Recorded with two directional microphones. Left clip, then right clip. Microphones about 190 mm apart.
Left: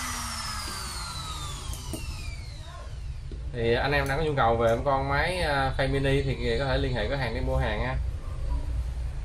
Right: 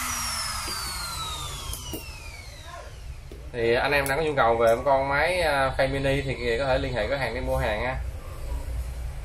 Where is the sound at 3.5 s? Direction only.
Centre (ahead or behind).